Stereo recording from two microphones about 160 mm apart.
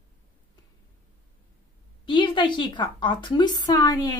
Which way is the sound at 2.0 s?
30° left (ahead or behind).